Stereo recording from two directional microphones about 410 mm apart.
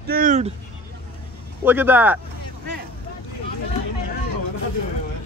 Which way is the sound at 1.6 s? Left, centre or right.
Centre.